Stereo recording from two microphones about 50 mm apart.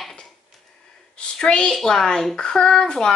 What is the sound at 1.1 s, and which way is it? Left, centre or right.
Speech, centre.